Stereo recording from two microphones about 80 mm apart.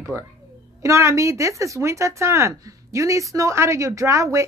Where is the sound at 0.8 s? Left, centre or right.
Right.